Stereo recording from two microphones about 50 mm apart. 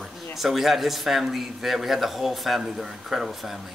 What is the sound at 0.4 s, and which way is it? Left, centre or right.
A man's voice, centre.